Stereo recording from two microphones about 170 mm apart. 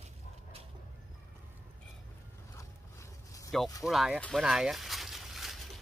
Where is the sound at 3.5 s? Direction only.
Centre (ahead or behind).